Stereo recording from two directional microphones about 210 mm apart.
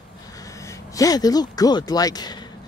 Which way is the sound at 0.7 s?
15° left (ahead or behind).